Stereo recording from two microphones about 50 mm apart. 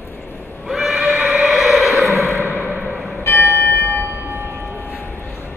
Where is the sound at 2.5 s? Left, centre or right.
Left.